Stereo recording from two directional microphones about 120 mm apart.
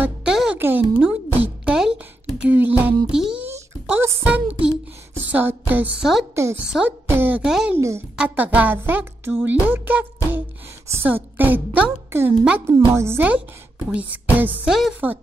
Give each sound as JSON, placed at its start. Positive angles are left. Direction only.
{"t": 0.0, "sound": "music", "side_deg": -5}
{"t": 0.6, "sound": "a sound", "side_deg": -15}
{"t": 3.2, "sound": "music", "side_deg": -5}
{"t": 3.9, "sound": "speech", "side_deg": -10}
{"t": 7.4, "sound": "speech", "side_deg": -5}
{"t": 7.7, "sound": "speech", "side_deg": -25}
{"t": 8.2, "sound": "speech", "side_deg": -15}
{"t": 14.7, "sound": "speech", "side_deg": -5}